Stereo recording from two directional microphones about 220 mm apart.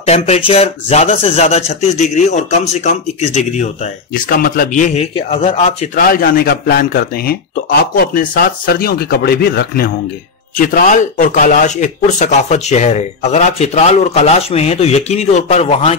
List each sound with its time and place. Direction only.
0.0 s speech: 30° left (ahead or behind)
5.9 s a man's voice: 40° left (ahead or behind)